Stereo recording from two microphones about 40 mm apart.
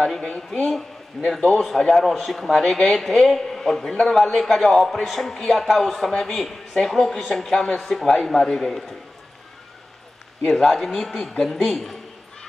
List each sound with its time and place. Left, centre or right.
0.0 s a man's voice: centre
7.5 s a man's voice: centre
10.4 s a man's voice: centre